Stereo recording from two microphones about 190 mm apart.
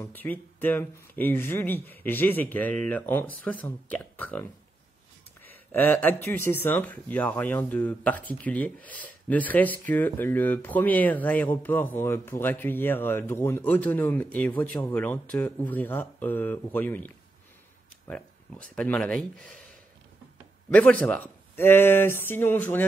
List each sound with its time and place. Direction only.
0.0 s speech: 10° left (ahead or behind)
5.7 s speech: 10° left (ahead or behind)
18.8 s speech: 5° left (ahead or behind)
20.7 s speech: 10° left (ahead or behind)